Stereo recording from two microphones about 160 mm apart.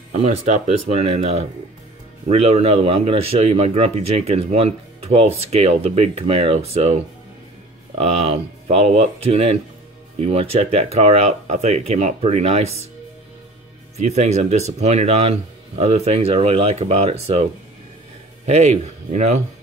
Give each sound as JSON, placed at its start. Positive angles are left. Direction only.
{"t": 0.2, "sound": "speech", "side_deg": -45}
{"t": 8.0, "sound": "speech", "side_deg": -40}
{"t": 13.9, "sound": "speech", "side_deg": -45}